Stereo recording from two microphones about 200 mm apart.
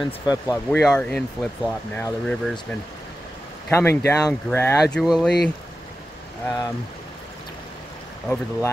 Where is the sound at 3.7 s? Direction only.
15° left (ahead or behind).